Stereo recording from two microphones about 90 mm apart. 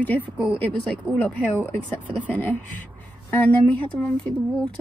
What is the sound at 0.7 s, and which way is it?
Speech, 15° left (ahead or behind).